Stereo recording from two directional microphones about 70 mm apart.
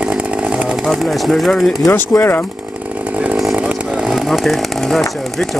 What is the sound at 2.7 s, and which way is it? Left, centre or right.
Chainsaw, right.